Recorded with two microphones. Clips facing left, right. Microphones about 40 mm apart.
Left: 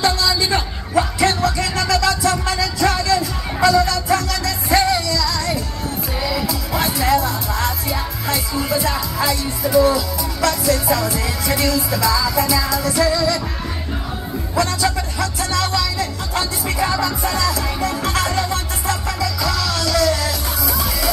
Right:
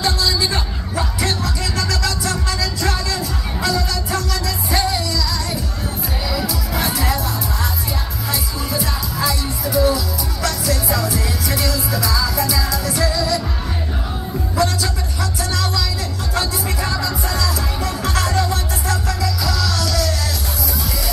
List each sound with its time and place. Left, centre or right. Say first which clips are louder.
0.0 s music: left 2 dB; left
6.7 s music: left 2 dB; left
7.1 s music: left 4 dB; left
14.6 s music: left 2 dB; left
16.8 s music: left 6 dB; left